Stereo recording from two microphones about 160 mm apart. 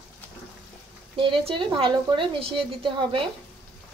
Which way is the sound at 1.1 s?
35° right (ahead or behind).